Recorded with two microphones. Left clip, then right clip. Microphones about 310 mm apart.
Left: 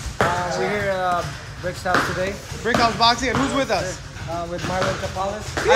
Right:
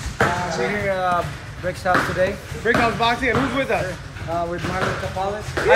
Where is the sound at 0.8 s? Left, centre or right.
Centre.